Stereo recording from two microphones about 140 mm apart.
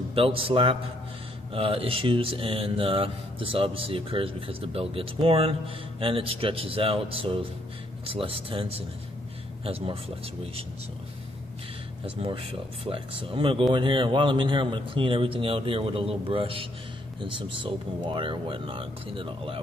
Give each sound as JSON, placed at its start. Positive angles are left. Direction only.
{"t": 0.1, "sound": "speech", "side_deg": -40}
{"t": 12.2, "sound": "speech", "side_deg": -40}